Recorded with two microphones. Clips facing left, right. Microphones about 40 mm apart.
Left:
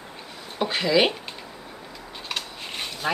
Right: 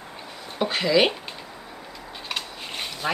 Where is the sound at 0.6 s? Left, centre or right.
Centre.